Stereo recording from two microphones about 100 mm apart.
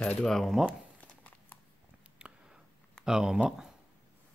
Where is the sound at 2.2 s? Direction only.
10° right (ahead or behind).